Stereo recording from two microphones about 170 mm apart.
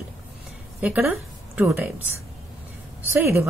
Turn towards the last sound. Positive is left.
turn(degrees=-15)  # may be behind; listen again after turning